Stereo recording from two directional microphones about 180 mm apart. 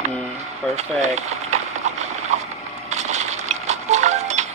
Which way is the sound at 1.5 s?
40° right (ahead or behind).